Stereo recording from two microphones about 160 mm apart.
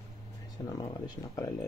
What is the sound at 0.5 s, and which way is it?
Speech, 25° left (ahead or behind).